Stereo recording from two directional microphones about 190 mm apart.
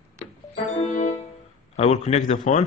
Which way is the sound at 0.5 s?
40° left (ahead or behind).